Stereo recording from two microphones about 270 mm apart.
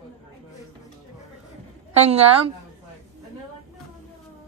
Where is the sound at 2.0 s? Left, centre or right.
Right.